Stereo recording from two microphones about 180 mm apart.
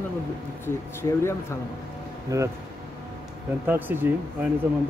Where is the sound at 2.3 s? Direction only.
20° right (ahead or behind).